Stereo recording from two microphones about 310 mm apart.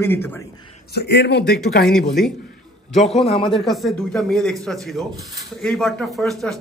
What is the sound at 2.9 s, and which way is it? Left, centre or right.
Speech, centre.